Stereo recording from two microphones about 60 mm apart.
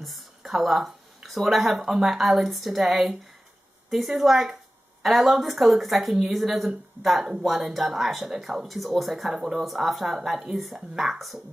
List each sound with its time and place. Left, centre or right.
0.0 s a woman's voice: centre